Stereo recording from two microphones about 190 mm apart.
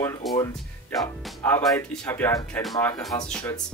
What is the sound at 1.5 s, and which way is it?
Speech, 5° left (ahead or behind).